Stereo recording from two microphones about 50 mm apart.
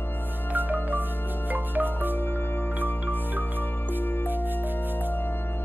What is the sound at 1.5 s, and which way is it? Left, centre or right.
Music, right.